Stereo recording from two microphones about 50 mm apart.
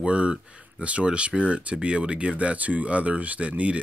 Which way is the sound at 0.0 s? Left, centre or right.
Right.